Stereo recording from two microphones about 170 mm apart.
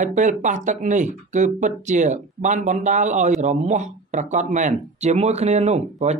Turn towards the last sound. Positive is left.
turn(degrees=-40)  # may be behind; listen again after turning